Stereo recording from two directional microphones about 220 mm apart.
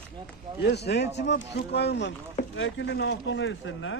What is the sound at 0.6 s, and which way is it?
Speech, 50° left (ahead or behind).